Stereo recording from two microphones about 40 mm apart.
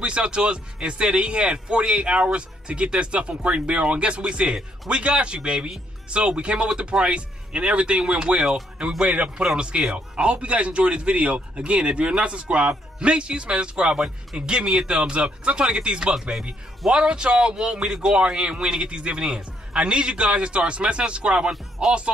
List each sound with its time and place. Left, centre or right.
0.0 s a man's voice: right
16.2 s speech: centre
16.9 s speech: right